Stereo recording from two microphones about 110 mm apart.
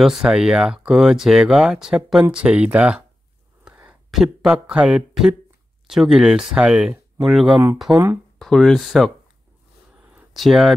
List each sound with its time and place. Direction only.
0.0 s speech: 5° right (ahead or behind)
4.1 s speech: 5° right (ahead or behind)
7.9 s speech: 15° right (ahead or behind)
8.4 s speech: 5° left (ahead or behind)
10.3 s speech: centre (ahead or behind)